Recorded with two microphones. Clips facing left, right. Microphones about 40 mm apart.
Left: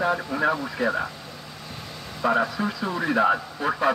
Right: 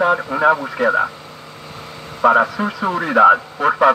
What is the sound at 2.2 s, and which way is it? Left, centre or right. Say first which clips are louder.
Speech: right 9 dB; right.